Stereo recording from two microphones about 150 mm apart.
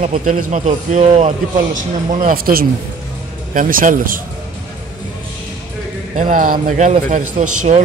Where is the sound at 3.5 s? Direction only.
65° right (ahead or behind).